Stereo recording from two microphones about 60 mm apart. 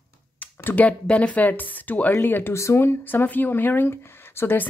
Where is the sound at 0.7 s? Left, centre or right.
Left.